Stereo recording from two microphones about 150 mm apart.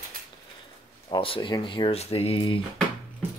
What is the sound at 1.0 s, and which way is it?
Speech, 35° left (ahead or behind).